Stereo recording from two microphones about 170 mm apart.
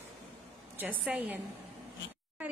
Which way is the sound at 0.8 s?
10° right (ahead or behind).